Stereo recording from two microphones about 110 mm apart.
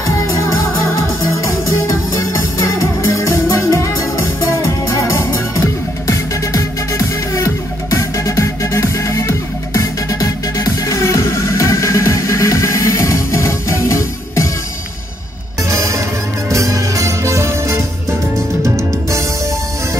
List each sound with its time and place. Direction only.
0.0 s music: 30° left (ahead or behind)
15.7 s music: 30° right (ahead or behind)